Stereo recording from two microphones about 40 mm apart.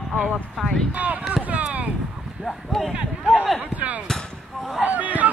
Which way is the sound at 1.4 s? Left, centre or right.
Right.